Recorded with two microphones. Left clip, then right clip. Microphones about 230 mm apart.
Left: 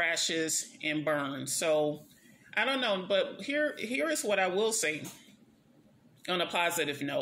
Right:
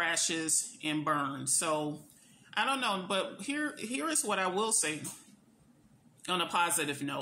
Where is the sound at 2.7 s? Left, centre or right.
Centre.